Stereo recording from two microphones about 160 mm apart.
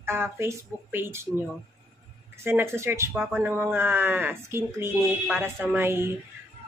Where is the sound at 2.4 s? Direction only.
15° right (ahead or behind).